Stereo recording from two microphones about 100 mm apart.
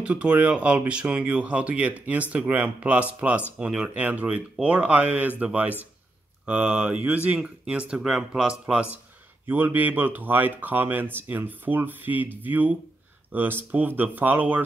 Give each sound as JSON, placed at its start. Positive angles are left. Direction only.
{"t": 0.0, "sound": "speech", "side_deg": -10}